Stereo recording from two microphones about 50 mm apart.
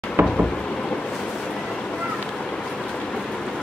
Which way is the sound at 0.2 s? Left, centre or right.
Right.